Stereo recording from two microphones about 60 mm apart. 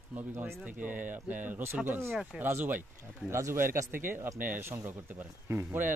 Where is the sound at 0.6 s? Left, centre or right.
Right.